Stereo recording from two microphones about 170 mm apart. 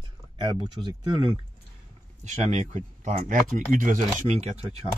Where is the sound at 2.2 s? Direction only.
45° right (ahead or behind).